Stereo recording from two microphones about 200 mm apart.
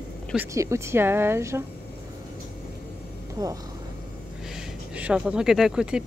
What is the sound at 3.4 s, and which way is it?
Speech, 20° right (ahead or behind).